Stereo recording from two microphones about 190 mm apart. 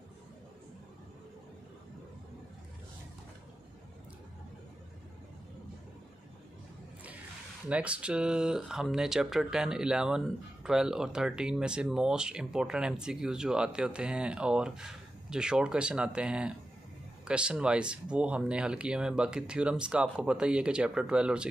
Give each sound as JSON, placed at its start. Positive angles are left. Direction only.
{"t": 7.7, "sound": "speech", "side_deg": -5}